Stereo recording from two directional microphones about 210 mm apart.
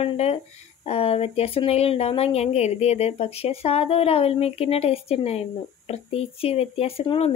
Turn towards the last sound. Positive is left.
turn(degrees=25)  # may be behind; listen again after turning